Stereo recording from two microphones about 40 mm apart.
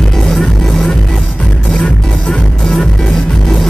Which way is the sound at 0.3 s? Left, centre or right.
Centre.